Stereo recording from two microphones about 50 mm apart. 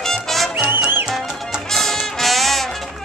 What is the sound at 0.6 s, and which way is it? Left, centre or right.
Music, right.